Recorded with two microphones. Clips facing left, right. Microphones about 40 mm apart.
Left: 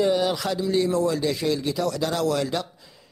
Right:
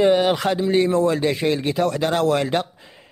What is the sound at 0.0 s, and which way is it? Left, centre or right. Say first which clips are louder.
Speech: right 5 dB; right.